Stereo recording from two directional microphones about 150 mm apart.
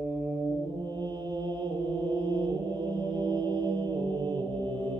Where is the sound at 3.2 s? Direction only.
30° right (ahead or behind).